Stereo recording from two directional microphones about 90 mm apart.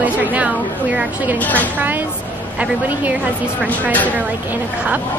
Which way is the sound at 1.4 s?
20° left (ahead or behind).